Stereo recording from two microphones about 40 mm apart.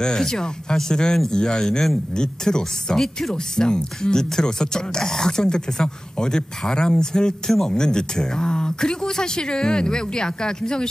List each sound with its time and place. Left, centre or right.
0.0 s speech: centre
3.0 s speech: centre
3.5 s speech: centre